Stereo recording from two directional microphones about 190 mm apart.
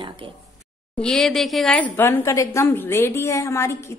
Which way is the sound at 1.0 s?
5° left (ahead or behind).